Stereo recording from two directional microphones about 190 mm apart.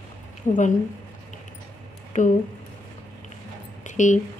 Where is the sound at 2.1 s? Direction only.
40° left (ahead or behind).